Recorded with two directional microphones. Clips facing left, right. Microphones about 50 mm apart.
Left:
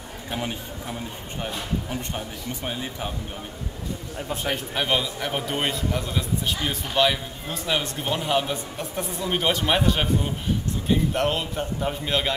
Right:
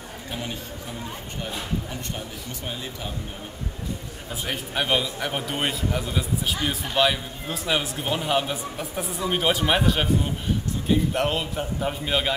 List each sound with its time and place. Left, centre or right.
0.3 s speech: centre
1.9 s speech: left
4.5 s a man's voice: centre